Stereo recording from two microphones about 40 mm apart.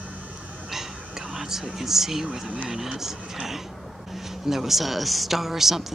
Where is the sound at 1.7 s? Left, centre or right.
Centre.